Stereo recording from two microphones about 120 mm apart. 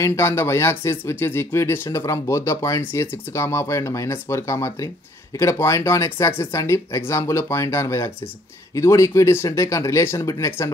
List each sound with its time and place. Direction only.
0.0 s speech: 20° left (ahead or behind)